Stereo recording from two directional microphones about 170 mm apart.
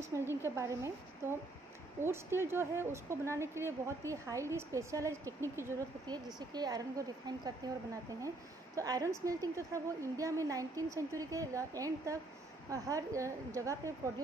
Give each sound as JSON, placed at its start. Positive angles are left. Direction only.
{"t": 0.4, "sound": "a woman's voice", "side_deg": -15}
{"t": 8.7, "sound": "a woman's voice", "side_deg": -20}